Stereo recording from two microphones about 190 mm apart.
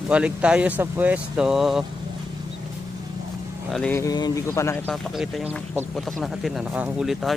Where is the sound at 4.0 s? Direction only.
20° left (ahead or behind).